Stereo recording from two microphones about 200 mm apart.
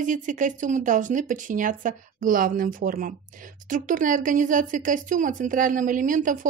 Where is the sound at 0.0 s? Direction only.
40° right (ahead or behind).